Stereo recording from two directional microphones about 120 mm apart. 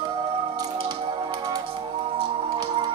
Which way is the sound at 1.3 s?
35° right (ahead or behind).